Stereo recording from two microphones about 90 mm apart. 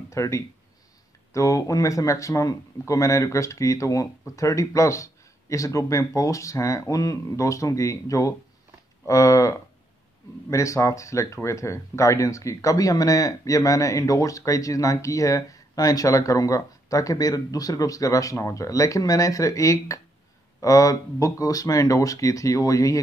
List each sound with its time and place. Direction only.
0.1 s speech: 35° left (ahead or behind)